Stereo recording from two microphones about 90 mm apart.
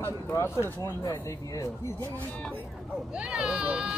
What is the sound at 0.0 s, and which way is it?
Speech, 30° left (ahead or behind).